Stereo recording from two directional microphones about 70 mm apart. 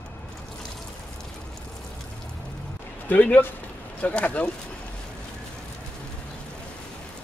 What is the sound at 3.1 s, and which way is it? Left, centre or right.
Speech, left.